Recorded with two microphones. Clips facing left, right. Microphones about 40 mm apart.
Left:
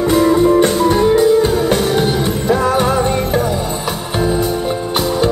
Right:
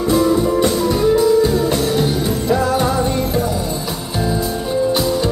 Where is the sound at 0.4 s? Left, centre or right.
Left.